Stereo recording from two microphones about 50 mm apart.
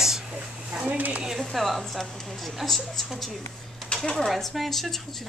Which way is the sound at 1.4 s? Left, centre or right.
Centre.